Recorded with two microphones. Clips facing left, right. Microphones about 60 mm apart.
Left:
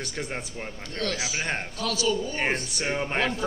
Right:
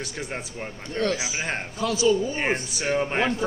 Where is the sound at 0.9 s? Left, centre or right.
Centre.